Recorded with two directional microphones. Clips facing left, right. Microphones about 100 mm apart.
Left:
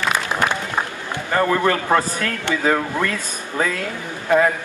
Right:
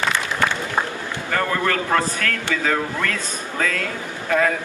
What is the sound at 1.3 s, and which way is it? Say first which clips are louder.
Speech: left 4 dB; 20° left (ahead or behind).